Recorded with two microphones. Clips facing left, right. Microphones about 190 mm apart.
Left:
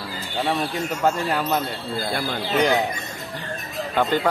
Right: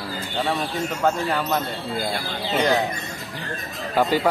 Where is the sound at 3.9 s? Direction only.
10° right (ahead or behind).